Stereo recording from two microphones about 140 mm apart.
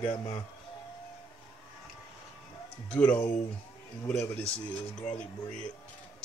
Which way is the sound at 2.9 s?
10° left (ahead or behind).